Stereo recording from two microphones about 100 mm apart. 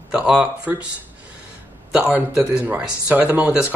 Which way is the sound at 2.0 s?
10° right (ahead or behind).